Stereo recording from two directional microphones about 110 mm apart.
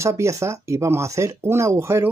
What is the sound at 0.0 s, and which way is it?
Speech, 25° right (ahead or behind).